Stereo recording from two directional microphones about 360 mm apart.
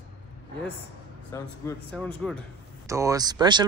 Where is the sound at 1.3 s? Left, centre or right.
Centre.